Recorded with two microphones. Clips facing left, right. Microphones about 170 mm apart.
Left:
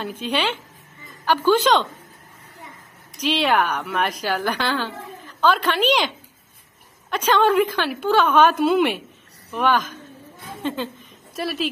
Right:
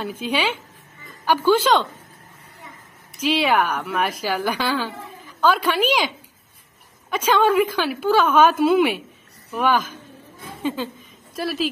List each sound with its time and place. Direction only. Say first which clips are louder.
0.0 s a woman's voice: even; 5° right (ahead or behind)
3.2 s a woman's voice: right 1 dB; 5° right (ahead or behind)